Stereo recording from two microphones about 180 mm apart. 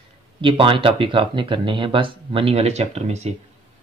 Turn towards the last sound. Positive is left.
turn(degrees=-35)  # may be behind; listen again after turning